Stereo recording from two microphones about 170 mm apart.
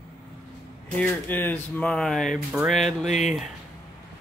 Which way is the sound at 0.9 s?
10° left (ahead or behind).